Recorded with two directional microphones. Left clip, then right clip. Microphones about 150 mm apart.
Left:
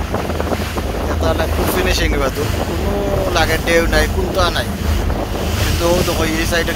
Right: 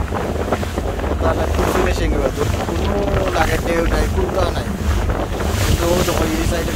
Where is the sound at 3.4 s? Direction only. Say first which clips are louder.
Left 6 dB; centre (ahead or behind).